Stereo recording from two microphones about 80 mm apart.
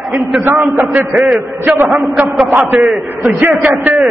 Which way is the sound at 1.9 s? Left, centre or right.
Centre.